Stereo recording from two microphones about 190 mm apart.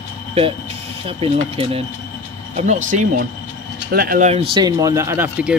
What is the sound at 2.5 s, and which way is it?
Speech, 40° right (ahead or behind).